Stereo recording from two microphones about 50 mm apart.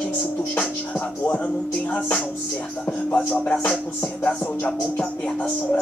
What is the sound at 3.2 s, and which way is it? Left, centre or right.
Music, left.